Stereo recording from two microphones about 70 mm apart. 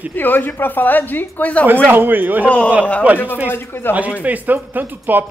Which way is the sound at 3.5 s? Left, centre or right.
Left.